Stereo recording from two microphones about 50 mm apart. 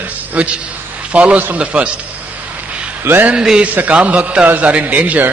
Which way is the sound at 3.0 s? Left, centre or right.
Right.